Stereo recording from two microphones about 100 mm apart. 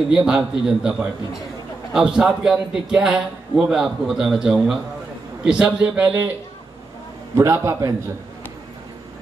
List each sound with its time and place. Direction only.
0.1 s a man's voice: 5° right (ahead or behind)
7.3 s a man's voice: 30° right (ahead or behind)